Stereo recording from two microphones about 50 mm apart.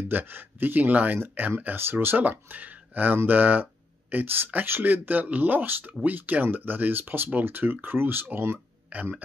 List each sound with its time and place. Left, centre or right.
0.1 s speech: right
1.8 s speech: right
2.2 s speech: right
8.9 s speech: right